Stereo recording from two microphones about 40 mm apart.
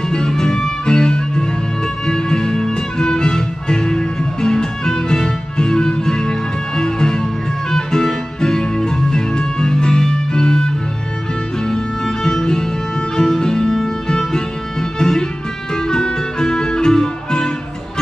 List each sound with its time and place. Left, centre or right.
0.1 s music: centre